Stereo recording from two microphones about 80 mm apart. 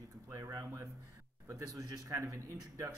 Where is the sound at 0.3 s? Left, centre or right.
Right.